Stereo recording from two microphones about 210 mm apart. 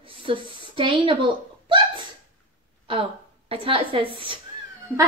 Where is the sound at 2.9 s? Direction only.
25° right (ahead or behind).